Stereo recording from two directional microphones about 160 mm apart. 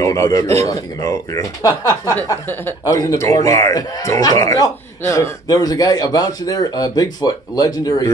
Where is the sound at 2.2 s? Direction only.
10° left (ahead or behind).